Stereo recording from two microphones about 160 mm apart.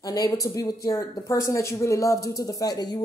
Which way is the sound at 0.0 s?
20° left (ahead or behind).